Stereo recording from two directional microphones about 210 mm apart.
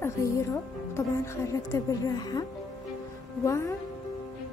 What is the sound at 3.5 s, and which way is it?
Speech, 15° left (ahead or behind).